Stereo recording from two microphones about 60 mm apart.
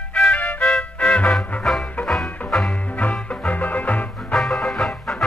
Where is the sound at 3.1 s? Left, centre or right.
Left.